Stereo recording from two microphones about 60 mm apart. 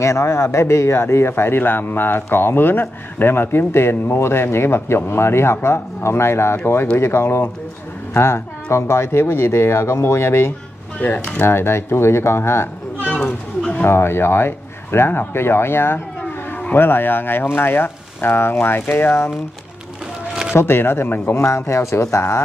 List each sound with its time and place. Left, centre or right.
0.0 s a man's voice: left
13.6 s a sound: centre
13.8 s a man's voice: left
20.5 s speech: left
21.5 s a man's voice: left